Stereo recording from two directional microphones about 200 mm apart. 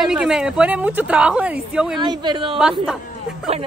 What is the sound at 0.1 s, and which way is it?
A woman's voice, 5° right (ahead or behind).